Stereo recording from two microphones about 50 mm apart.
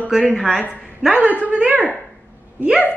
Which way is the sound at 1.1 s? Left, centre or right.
Right.